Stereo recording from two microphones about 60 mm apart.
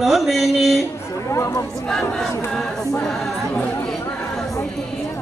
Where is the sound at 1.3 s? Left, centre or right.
Left.